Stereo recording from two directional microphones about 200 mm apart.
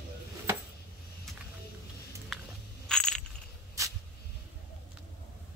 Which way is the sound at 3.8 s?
15° right (ahead or behind).